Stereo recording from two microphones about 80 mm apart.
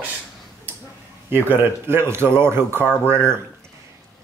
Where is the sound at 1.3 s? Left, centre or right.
Right.